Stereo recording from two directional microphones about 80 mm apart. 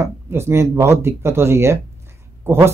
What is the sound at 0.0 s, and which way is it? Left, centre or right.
A man's voice, right.